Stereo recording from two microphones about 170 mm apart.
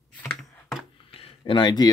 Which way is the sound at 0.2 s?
5° left (ahead or behind).